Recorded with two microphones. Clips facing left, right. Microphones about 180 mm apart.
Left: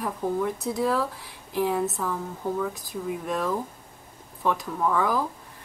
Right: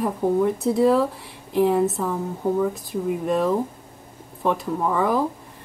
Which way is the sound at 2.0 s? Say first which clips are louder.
Right 5 dB; 20° right (ahead or behind).